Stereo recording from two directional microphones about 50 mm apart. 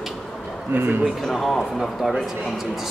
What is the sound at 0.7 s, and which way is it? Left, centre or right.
Speech, right.